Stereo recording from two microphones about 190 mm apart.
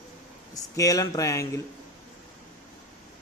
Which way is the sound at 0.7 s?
15° left (ahead or behind).